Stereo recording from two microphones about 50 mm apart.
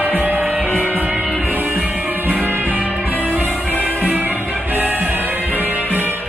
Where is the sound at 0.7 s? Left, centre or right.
Left.